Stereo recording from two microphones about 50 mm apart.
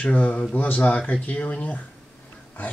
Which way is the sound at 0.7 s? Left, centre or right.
Left.